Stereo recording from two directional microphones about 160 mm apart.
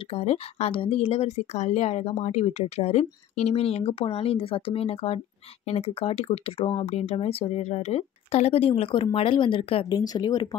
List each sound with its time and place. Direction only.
0.1 s speech: 40° left (ahead or behind)